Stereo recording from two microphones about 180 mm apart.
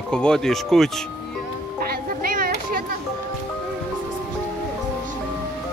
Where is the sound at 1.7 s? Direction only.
55° right (ahead or behind).